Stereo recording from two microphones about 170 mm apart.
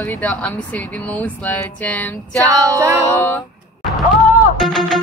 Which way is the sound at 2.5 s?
20° right (ahead or behind).